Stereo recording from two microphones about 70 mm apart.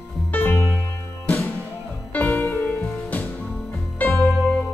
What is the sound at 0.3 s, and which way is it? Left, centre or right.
Music, left.